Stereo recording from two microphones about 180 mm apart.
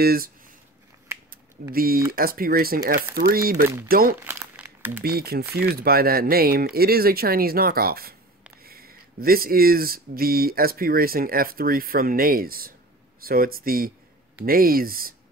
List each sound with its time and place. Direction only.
0.0 s speech: 55° right (ahead or behind)
1.7 s speech: 55° right (ahead or behind)
4.2 s crumpling: 10° right (ahead or behind)
5.0 s speech: 60° right (ahead or behind)